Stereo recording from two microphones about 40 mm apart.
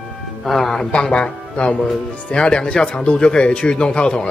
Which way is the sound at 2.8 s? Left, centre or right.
Left.